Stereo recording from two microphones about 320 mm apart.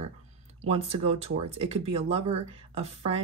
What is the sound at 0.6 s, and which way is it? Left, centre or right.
Speech, centre.